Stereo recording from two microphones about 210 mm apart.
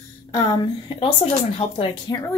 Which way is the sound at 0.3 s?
20° left (ahead or behind).